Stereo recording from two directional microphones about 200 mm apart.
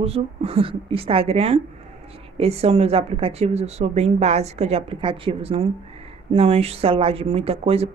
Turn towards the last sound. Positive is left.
turn(degrees=-30)  # may be behind; listen again after turning